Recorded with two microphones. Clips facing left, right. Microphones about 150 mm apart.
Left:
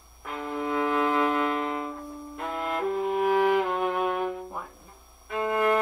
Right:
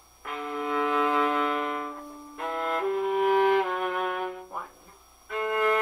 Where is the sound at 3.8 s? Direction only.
30° left (ahead or behind).